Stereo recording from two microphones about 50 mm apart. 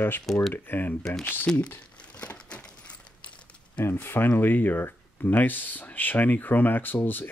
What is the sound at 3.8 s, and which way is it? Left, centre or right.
Speech, left.